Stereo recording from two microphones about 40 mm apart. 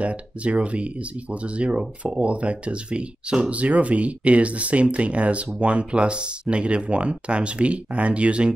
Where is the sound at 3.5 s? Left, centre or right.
Right.